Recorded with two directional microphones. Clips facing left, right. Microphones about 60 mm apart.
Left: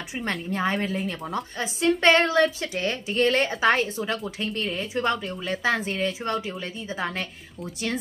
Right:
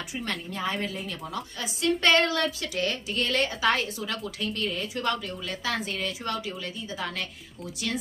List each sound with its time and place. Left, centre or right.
0.5 s a woman's voice: left